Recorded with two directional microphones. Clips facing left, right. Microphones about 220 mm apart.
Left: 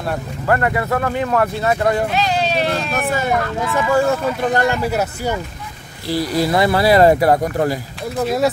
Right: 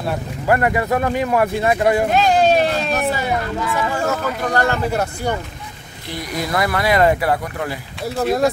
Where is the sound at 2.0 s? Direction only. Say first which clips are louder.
Right 5 dB; 50° right (ahead or behind).